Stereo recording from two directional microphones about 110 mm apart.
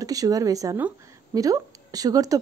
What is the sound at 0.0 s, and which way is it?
A woman's voice, 35° right (ahead or behind).